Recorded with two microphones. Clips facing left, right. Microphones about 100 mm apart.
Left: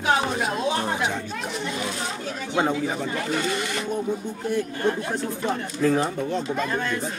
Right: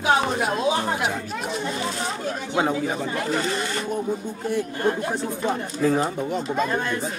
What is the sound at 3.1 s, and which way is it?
Speech, 35° right (ahead or behind).